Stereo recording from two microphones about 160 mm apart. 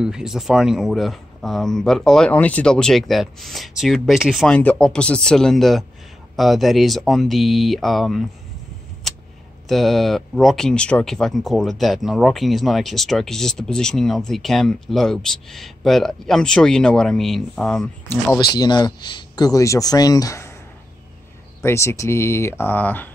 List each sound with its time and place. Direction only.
0.0 s speech: 5° right (ahead or behind)
9.7 s speech: centre (ahead or behind)
18.0 s speech: 15° left (ahead or behind)
18.4 s speech: 25° left (ahead or behind)
21.6 s speech: 15° left (ahead or behind)